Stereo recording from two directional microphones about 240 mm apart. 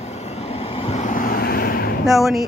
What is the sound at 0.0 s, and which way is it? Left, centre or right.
Vehicle, left.